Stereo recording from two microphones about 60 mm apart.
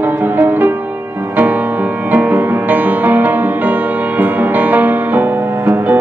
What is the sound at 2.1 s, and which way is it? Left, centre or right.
Music, right.